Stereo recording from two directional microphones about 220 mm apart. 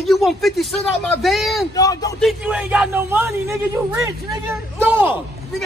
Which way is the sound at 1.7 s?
15° left (ahead or behind).